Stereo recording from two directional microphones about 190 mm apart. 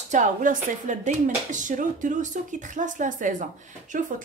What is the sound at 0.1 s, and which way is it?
A woman's voice, 40° right (ahead or behind).